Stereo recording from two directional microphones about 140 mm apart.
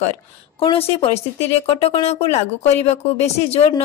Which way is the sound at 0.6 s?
40° left (ahead or behind).